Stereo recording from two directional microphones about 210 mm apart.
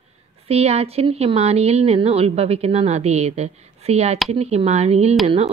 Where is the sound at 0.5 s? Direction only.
30° right (ahead or behind).